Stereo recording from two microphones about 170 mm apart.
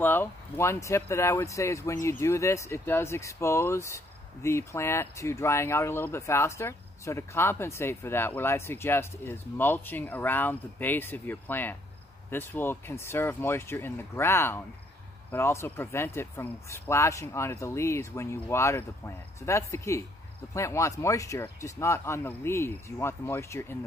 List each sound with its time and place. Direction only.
0.0 s speech: 10° left (ahead or behind)